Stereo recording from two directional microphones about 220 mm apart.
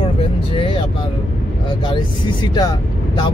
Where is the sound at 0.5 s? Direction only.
25° left (ahead or behind).